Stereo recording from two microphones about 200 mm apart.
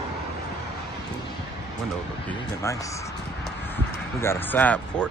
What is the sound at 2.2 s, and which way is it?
Speech, 15° left (ahead or behind).